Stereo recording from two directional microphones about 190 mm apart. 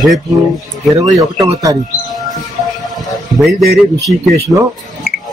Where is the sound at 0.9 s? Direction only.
20° right (ahead or behind).